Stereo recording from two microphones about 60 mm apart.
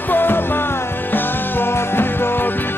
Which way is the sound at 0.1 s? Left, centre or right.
Left.